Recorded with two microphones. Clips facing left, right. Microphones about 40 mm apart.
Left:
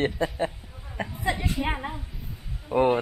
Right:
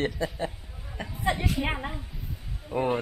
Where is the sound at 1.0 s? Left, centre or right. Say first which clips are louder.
Left 5 dB; left.